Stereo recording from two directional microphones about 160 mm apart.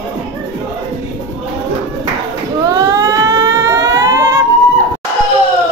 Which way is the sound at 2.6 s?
20° right (ahead or behind).